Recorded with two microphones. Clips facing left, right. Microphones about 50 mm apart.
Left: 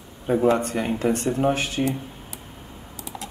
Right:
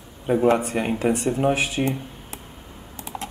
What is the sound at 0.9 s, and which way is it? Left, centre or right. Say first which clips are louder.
Speech: even; centre.